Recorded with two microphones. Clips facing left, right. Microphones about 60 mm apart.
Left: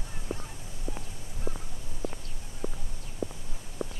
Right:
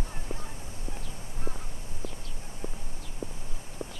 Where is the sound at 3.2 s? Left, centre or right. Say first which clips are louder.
Left 4 dB; right.